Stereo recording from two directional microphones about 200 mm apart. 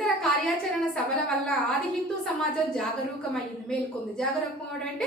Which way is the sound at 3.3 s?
5° left (ahead or behind).